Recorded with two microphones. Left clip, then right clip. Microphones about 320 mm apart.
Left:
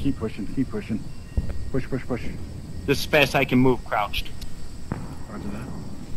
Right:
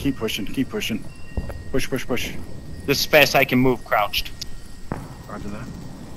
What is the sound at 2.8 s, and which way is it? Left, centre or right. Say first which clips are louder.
Speech: right 4 dB; centre.